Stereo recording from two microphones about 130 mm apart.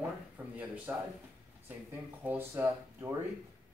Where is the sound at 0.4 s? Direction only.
10° right (ahead or behind).